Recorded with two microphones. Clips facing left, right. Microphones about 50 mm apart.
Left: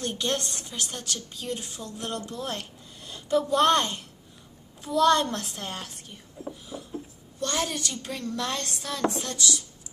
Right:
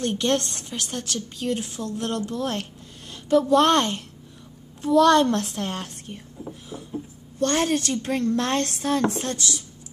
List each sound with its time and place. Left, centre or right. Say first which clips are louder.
0.0 s speech: right 6 dB; right
6.7 s a sound: right 3 dB; left
7.3 s speech: right 7 dB; right